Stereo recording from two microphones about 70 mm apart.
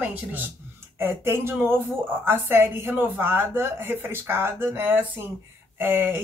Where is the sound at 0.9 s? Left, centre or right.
Right.